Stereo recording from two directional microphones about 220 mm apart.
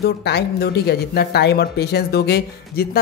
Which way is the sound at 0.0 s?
50° left (ahead or behind).